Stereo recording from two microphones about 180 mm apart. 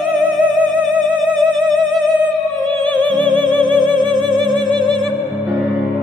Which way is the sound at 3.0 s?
25° right (ahead or behind).